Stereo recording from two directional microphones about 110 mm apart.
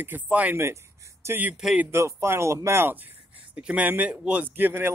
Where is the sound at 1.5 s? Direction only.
5° right (ahead or behind).